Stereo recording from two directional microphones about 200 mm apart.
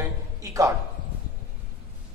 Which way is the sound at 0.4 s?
15° right (ahead or behind).